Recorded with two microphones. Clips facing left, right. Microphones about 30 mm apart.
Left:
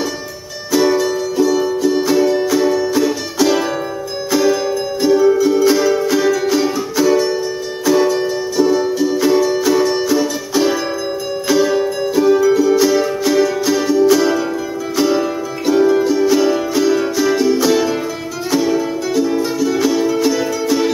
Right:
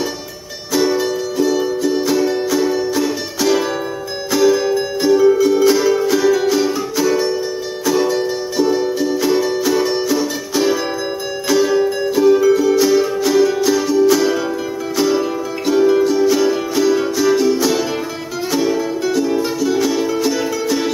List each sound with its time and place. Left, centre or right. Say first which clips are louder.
0.9 s music: left 2 dB; centre
8.5 s music: left 2 dB; centre